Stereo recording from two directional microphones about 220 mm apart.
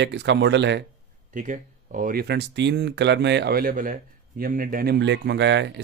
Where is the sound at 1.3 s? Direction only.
35° right (ahead or behind); by 5.8 s 55° right (ahead or behind).